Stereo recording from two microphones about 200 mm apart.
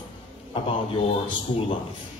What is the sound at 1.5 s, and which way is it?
Speech, 30° left (ahead or behind).